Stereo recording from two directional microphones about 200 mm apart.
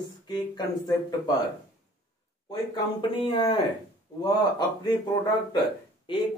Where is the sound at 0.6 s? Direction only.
20° left (ahead or behind).